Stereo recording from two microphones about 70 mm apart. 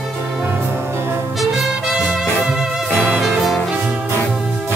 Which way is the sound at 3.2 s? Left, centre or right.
Centre.